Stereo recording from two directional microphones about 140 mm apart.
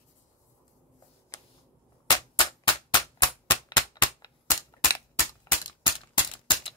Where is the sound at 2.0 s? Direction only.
35° left (ahead or behind).